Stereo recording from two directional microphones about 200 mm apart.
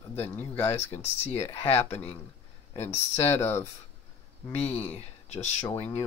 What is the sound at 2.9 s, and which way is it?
Speech, 15° left (ahead or behind).